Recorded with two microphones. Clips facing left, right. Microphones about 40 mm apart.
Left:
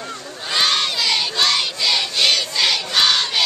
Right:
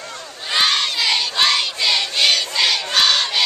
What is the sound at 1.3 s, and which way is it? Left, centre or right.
Child singing, centre.